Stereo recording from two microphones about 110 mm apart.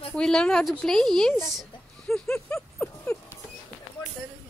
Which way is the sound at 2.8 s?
15° left (ahead or behind).